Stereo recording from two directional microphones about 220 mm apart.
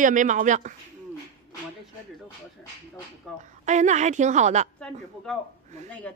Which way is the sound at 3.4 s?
30° right (ahead or behind).